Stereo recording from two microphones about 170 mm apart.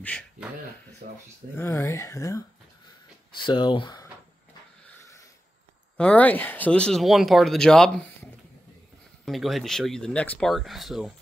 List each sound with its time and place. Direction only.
1.0 s speech: 60° right (ahead or behind)
1.5 s speech: 15° left (ahead or behind)
3.3 s speech: 25° left (ahead or behind)
5.9 s speech: 5° left (ahead or behind)